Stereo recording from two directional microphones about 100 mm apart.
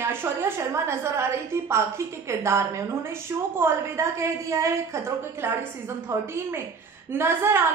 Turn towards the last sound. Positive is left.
turn(degrees=-25)  # may be behind; listen again after turning